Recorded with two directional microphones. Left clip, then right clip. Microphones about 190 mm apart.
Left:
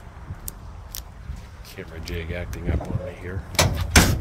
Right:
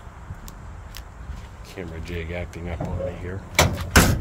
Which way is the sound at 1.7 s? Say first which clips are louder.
Right 1 dB; centre (ahead or behind).